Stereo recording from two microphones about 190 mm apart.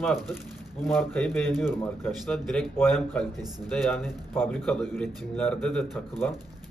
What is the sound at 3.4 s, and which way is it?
Speech, 20° right (ahead or behind).